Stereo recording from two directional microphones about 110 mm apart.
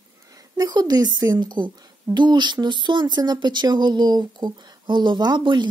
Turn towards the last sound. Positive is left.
turn(degrees=-40)  # may be behind; listen again after turning